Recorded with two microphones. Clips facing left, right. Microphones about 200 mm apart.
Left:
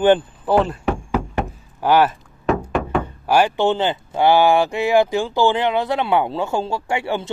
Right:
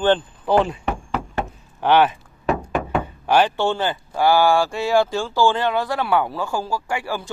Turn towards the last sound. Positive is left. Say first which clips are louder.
# left 4 dB
turn(degrees=25)  # may be behind; listen again after turning